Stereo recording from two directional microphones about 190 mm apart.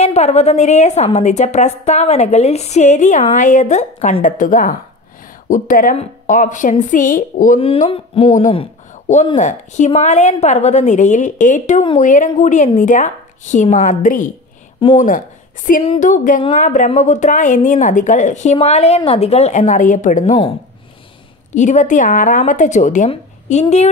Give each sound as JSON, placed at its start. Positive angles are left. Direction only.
{"t": 0.0, "sound": "a woman's voice", "side_deg": 35}
{"t": 7.6, "sound": "a woman's voice", "side_deg": 30}
{"t": 21.5, "sound": "a woman's voice", "side_deg": 40}